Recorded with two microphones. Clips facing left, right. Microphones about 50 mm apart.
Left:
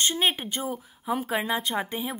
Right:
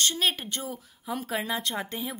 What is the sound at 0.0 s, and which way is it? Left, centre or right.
A woman's voice, left.